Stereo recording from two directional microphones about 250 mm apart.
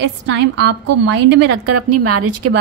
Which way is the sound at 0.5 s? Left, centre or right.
Right.